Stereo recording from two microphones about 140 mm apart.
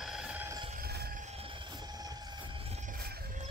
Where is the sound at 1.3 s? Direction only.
40° right (ahead or behind).